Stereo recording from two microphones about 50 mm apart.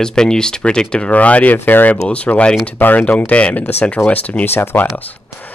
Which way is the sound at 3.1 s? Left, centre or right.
Left.